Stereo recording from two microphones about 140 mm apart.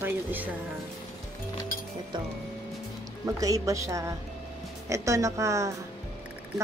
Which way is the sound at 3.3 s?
25° right (ahead or behind).